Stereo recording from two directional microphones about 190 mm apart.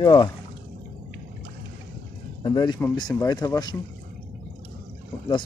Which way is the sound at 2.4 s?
25° left (ahead or behind).